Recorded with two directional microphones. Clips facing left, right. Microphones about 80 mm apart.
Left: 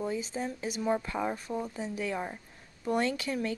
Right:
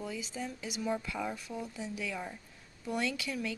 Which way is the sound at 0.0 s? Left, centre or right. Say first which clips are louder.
Left 6 dB; left.